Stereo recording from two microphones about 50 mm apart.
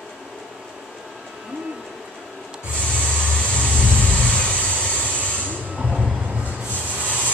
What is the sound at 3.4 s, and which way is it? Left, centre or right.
Vehicle, left.